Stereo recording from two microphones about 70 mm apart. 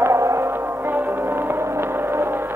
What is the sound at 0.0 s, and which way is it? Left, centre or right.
Music, right.